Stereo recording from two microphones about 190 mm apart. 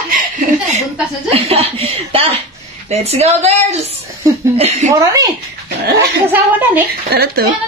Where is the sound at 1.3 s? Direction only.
30° right (ahead or behind).